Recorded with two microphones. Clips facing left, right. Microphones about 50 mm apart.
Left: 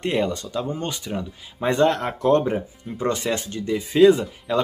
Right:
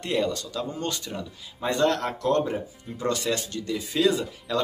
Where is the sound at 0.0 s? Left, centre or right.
Left.